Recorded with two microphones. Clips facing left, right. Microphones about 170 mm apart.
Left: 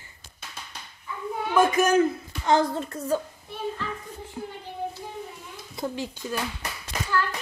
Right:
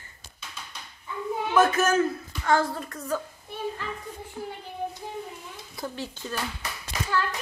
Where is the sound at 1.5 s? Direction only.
15° left (ahead or behind).